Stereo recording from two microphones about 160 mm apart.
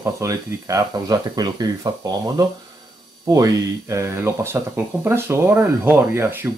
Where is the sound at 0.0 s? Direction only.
20° right (ahead or behind).